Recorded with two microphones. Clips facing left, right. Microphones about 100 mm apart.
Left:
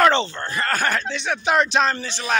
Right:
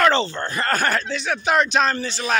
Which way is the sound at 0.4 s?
20° right (ahead or behind).